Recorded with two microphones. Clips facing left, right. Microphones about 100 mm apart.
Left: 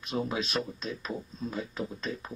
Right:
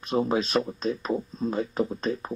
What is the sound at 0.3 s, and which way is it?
Speech, 40° right (ahead or behind).